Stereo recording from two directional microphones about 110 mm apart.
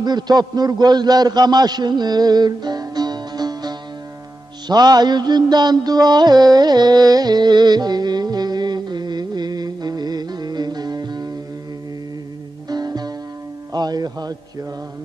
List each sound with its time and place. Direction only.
0.0 s a man's voice: 40° right (ahead or behind)
4.6 s music: 40° right (ahead or behind)
12.6 s music: 40° right (ahead or behind)